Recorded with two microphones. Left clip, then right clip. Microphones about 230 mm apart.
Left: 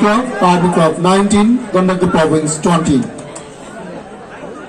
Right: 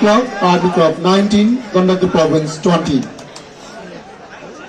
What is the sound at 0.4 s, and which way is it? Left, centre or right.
Speech, left.